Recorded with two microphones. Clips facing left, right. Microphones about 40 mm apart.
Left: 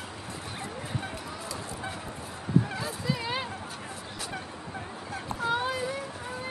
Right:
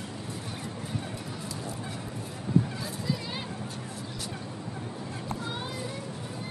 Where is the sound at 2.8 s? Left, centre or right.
Left.